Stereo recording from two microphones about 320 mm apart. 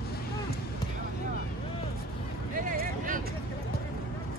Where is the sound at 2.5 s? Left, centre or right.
Right.